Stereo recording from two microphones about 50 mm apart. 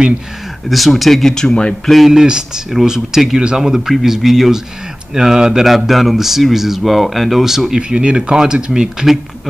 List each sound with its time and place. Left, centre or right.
0.7 s speech: centre
1.9 s speech: centre
2.2 s speech: centre